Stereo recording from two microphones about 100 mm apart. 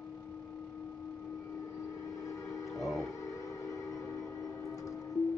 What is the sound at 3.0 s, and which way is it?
Music, 30° left (ahead or behind).